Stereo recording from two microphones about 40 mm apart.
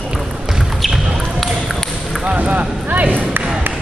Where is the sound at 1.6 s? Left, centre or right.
Centre.